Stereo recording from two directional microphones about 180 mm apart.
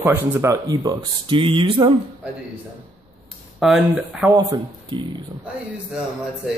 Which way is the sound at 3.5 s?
Centre (ahead or behind).